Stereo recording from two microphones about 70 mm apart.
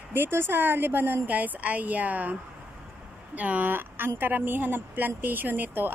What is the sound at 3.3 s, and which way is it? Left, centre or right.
Speech, right.